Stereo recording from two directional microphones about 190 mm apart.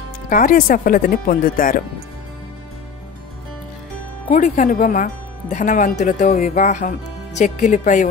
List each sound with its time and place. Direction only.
0.3 s speech: 45° left (ahead or behind)
4.3 s speech: 40° left (ahead or behind)